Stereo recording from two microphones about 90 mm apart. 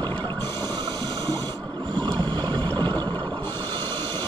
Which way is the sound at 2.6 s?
20° left (ahead or behind).